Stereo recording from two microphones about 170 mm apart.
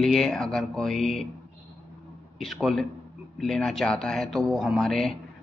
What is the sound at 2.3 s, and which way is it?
Speech, centre (ahead or behind).